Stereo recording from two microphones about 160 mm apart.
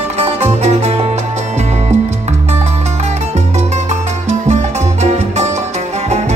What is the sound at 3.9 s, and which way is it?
Music, 45° right (ahead or behind).